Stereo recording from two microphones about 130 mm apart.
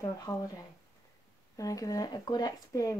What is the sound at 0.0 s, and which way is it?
Speech, 30° left (ahead or behind).